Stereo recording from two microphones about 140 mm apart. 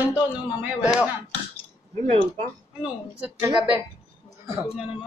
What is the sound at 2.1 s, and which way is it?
Speech, 45° right (ahead or behind).